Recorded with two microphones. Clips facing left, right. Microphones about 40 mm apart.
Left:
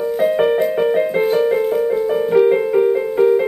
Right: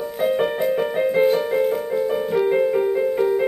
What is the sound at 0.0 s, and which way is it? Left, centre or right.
Music, centre.